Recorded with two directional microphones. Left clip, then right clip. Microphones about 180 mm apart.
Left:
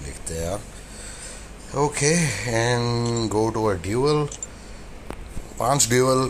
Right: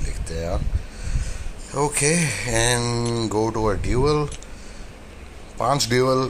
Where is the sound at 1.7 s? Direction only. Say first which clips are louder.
Even; centre (ahead or behind).